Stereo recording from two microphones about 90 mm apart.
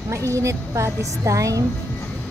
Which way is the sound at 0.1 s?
35° right (ahead or behind).